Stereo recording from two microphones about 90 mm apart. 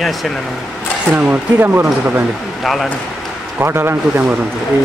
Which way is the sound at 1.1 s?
15° right (ahead or behind).